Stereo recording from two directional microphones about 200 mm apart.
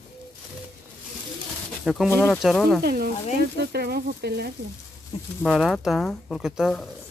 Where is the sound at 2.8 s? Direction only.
50° right (ahead or behind).